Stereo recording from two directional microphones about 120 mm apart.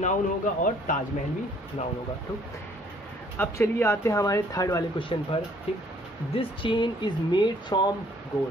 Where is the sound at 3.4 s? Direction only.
20° left (ahead or behind).